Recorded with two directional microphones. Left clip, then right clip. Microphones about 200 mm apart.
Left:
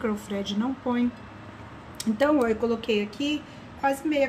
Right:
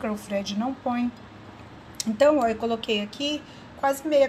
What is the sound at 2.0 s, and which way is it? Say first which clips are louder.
A woman's voice: right 3 dB; 30° right (ahead or behind).